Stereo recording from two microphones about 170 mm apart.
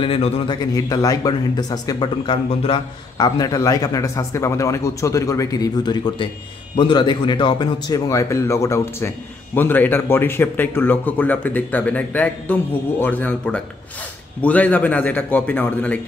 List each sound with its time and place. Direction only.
0.0 s speech: 30° left (ahead or behind); by 16.0 s 10° left (ahead or behind)